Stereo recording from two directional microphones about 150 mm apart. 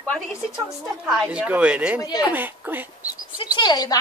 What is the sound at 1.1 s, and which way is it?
Speech, 5° right (ahead or behind).